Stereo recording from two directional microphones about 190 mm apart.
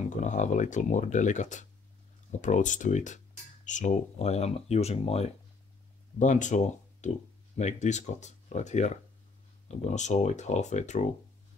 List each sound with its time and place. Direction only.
0.1 s speech: 40° left (ahead or behind)